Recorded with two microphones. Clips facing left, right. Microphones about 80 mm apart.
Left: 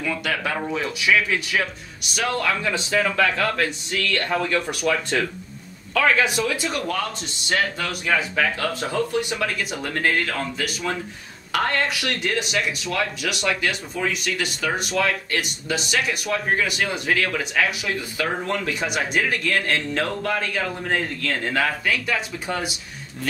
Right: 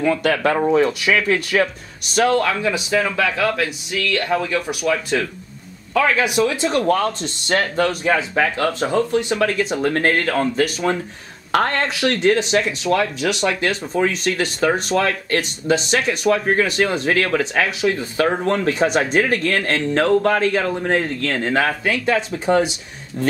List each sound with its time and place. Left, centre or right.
0.0 s speech: right
2.1 s speech: right
2.6 s speech: centre
5.9 s speech: centre
6.8 s speech: right
8.0 s speech: right
9.9 s speech: right
17.4 s speech: right